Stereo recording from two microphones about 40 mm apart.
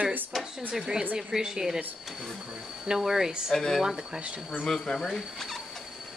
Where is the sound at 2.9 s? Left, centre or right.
Centre.